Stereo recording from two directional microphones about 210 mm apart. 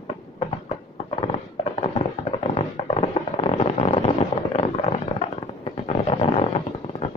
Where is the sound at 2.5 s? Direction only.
30° left (ahead or behind).